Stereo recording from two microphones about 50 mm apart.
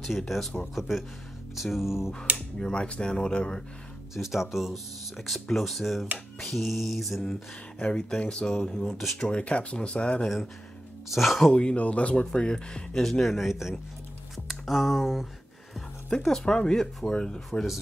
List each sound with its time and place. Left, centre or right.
0.3 s finger snapping: centre
2.3 s speech: centre
4.1 s speech: centre
5.1 s finger snapping: centre
7.2 s speech: centre
9.4 s speech: left
11.1 s finger snapping: centre
11.5 s speech: left; by 13.7 s centre
14.5 s a sound: centre
16.1 s speech: centre